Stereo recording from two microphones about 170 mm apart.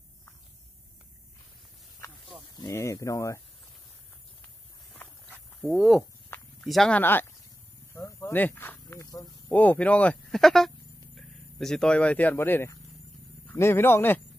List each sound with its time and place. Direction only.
2.5 s speech: 20° left (ahead or behind)
5.7 s speech: centre (ahead or behind); by 9.3 s 20° left (ahead or behind)
9.5 s speech: 10° left (ahead or behind)